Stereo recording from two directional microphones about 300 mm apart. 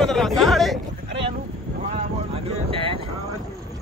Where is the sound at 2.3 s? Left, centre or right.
Centre.